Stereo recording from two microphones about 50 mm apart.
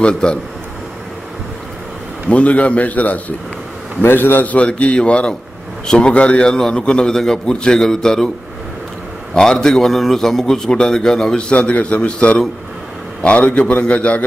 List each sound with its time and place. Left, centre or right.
0.0 s a man's voice: centre
2.2 s a man's voice: left
4.0 s a man's voice: left
4.6 s a man's voice: left
9.3 s a man's voice: centre